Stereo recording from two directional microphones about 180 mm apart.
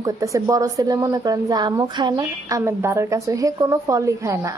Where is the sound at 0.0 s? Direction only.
20° right (ahead or behind).